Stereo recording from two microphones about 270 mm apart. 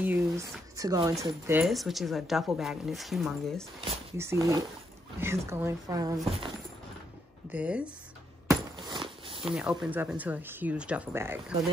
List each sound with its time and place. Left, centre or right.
0.0 s a woman's voice: centre
7.5 s speech: centre
8.5 s a sound: centre
9.4 s speech: centre